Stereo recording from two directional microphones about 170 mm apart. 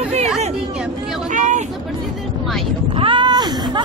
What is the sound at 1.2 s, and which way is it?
Speech, 45° right (ahead or behind).